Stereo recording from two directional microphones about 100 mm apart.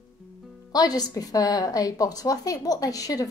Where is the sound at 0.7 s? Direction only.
40° left (ahead or behind).